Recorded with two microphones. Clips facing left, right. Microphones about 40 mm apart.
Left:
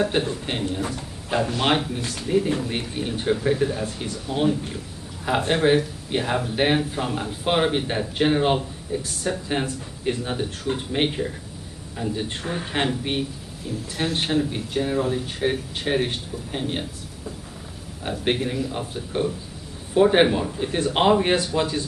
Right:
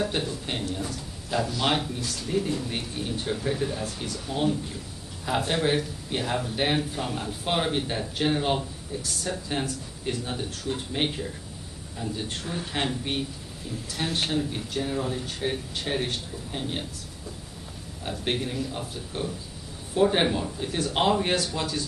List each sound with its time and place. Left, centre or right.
0.0 s a man's voice: left
2.2 s speech: centre
18.2 s speech: centre